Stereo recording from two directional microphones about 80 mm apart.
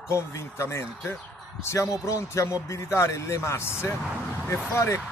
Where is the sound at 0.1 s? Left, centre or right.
Left.